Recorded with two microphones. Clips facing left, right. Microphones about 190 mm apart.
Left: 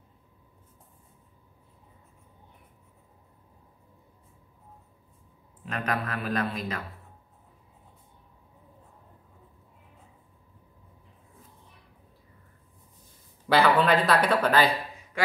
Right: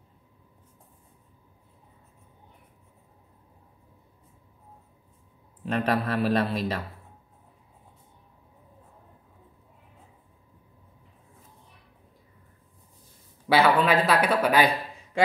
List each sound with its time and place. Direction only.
5.7 s speech: 35° right (ahead or behind)
13.5 s speech: 5° right (ahead or behind)